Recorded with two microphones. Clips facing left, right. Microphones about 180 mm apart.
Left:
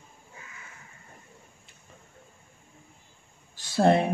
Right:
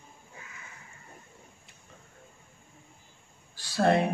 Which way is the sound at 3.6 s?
25° left (ahead or behind).